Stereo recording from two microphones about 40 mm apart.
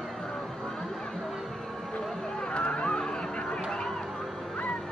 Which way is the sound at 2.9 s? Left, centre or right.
Centre.